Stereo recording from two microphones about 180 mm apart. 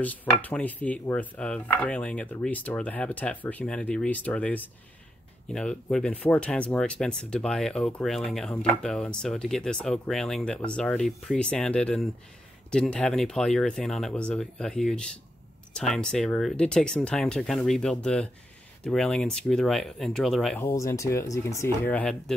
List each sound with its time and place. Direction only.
0.0 s speech: 10° left (ahead or behind)
20.6 s speech: 15° left (ahead or behind)